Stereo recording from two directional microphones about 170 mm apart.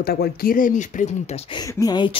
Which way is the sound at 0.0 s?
65° left (ahead or behind).